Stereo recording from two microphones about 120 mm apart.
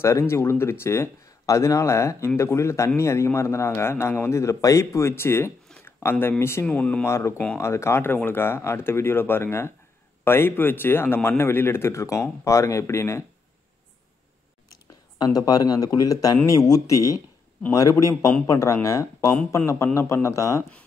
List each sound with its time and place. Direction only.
0.0 s speech: 20° left (ahead or behind)
7.1 s speech: 25° left (ahead or behind)
15.1 s speech: 35° left (ahead or behind)